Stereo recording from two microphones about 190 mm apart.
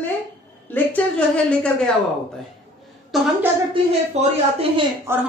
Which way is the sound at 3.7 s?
30° right (ahead or behind).